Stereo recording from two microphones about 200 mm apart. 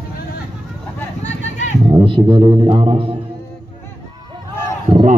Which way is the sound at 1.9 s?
25° right (ahead or behind).